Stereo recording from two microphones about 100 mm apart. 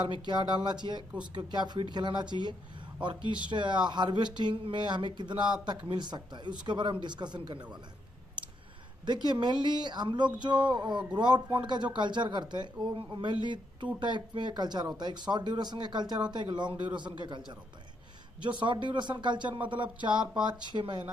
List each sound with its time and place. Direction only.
0.3 s speech: 45° right (ahead or behind)
9.0 s speech: 45° right (ahead or behind)
18.4 s speech: 50° right (ahead or behind)